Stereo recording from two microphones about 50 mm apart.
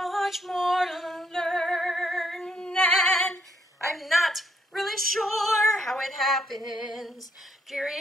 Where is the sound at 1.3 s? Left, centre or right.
Centre.